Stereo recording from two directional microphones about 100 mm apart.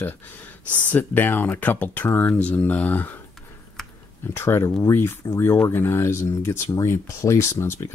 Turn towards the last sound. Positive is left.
turn(degrees=25)  # may be behind; listen again after turning